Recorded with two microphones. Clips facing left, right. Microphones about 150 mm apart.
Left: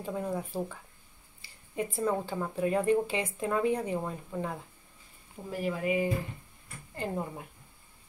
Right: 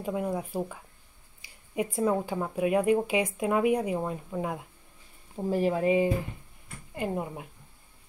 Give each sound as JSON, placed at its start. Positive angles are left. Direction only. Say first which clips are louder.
{"t": 0.0, "sound": "speech", "louder": "right 3 dB", "side_deg": -10}
{"t": 5.3, "sound": "speech", "louder": "right 7 dB", "side_deg": -30}
{"t": 7.0, "sound": "speech", "louder": "right 3 dB", "side_deg": -15}